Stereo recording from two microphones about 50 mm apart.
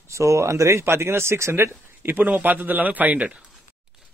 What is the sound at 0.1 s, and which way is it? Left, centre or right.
Speech, right.